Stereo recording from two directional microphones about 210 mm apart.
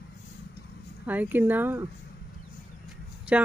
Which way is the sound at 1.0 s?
10° right (ahead or behind).